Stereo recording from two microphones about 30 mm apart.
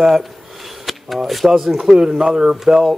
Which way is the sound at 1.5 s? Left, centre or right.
Centre.